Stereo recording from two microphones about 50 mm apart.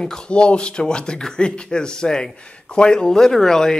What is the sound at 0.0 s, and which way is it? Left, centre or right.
Speech, centre.